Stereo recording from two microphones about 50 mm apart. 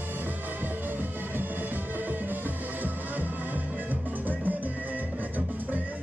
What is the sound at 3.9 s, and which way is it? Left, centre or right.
Music, right.